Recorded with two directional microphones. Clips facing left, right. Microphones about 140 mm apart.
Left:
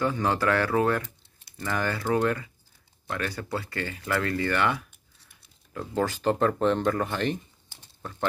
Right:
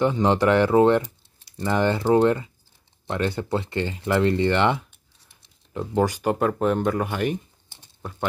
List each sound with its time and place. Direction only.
0.0 s speech: 20° right (ahead or behind)